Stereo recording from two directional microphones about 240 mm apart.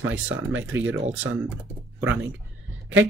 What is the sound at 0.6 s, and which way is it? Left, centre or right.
Speech, centre.